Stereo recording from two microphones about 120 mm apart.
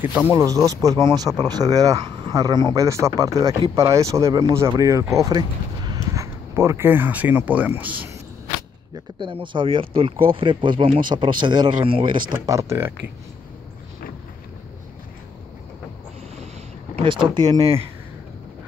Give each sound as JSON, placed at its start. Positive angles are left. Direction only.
{"t": 0.0, "sound": "speech", "side_deg": -20}
{"t": 8.9, "sound": "speech", "side_deg": -45}
{"t": 12.4, "sound": "speech", "side_deg": -25}
{"t": 16.9, "sound": "speech", "side_deg": -45}